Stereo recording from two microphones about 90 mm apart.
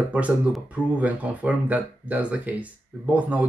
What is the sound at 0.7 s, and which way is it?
Speech, 15° right (ahead or behind).